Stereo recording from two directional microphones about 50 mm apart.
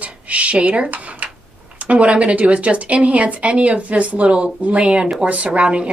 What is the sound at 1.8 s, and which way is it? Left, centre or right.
Speech, right.